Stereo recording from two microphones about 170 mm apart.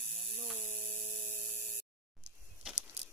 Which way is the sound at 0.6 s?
45° left (ahead or behind).